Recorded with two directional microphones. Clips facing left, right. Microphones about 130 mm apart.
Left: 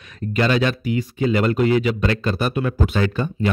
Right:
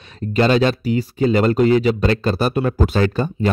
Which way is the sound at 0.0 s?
30° right (ahead or behind).